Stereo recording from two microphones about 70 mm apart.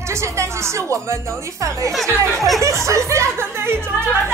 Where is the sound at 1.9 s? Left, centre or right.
Centre.